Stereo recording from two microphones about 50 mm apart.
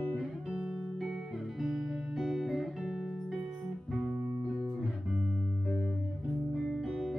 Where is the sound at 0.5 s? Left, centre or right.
Centre.